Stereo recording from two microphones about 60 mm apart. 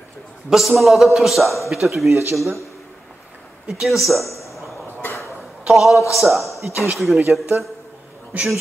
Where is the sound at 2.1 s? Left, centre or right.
Right.